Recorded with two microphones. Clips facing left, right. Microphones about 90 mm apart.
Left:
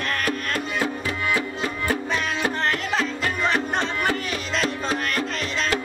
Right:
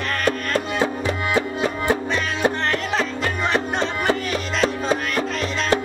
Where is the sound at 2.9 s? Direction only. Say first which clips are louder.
Right 2 dB; centre (ahead or behind).